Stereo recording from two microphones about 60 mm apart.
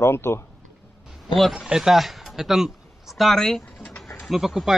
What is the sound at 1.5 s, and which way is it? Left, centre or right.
Speech, centre.